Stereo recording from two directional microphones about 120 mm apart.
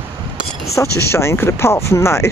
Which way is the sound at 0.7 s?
20° left (ahead or behind).